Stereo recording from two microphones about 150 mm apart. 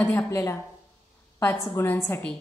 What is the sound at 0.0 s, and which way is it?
A woman's voice, 15° left (ahead or behind).